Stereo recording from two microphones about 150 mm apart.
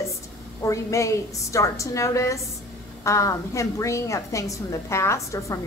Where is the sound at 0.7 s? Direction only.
20° left (ahead or behind).